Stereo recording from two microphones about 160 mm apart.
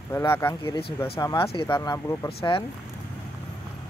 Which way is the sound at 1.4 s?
35° left (ahead or behind).